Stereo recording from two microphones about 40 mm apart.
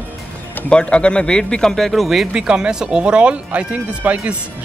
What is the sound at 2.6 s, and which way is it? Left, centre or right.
Speech, centre.